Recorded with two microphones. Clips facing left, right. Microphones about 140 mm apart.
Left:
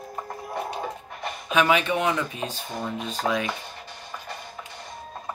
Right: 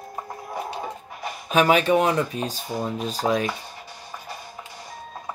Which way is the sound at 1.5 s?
40° right (ahead or behind).